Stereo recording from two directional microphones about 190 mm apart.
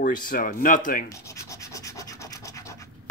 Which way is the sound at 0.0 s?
45° left (ahead or behind).